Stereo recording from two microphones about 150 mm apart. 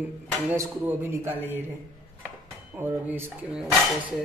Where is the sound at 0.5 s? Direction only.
15° right (ahead or behind).